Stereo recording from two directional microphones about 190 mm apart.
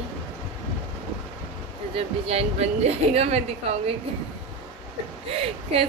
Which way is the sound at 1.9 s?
30° right (ahead or behind).